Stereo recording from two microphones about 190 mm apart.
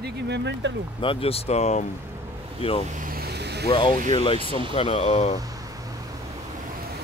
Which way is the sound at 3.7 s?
25° left (ahead or behind).